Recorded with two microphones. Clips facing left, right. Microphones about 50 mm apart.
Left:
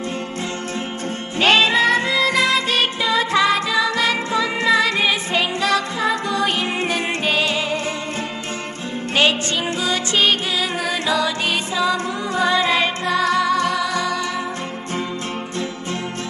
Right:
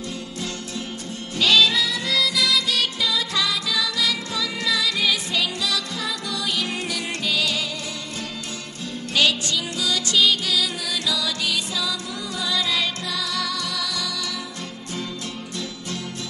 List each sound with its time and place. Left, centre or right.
1.4 s music: left
9.1 s music: left